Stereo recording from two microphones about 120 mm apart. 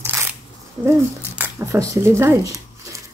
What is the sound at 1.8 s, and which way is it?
Speech, 25° right (ahead or behind).